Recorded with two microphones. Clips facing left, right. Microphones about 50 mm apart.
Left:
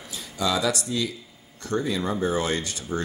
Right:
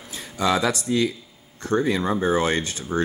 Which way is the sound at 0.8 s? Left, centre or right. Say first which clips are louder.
Right 6 dB; right.